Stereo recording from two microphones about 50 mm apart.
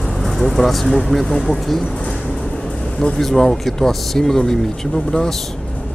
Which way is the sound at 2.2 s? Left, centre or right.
Centre.